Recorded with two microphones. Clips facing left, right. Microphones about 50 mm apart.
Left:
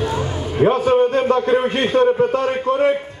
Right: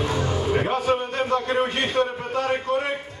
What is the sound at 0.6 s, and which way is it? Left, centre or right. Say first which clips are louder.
Speech: left 9 dB; left.